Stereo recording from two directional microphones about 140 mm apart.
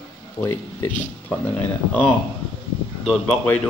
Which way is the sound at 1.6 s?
10° left (ahead or behind).